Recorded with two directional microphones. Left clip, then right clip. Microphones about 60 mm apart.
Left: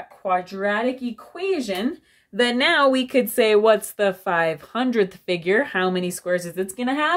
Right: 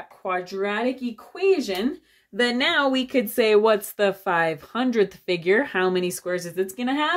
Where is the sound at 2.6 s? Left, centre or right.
Left.